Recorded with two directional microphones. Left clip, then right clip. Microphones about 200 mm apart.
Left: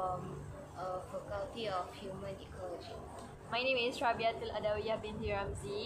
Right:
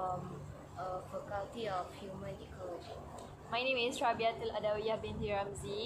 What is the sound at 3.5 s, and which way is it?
A woman's voice, 20° right (ahead or behind).